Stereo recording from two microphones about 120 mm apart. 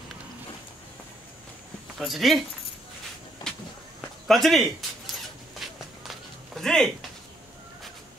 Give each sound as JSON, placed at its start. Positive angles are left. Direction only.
{"t": 2.0, "sound": "speech", "side_deg": 0}
{"t": 3.4, "sound": "walk", "side_deg": 35}
{"t": 4.3, "sound": "speech", "side_deg": 0}
{"t": 5.6, "sound": "walk", "side_deg": 0}
{"t": 6.0, "sound": "a sound", "side_deg": 5}